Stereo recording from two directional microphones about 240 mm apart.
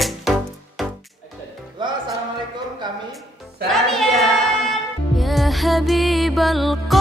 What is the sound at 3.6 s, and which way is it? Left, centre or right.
Music, centre.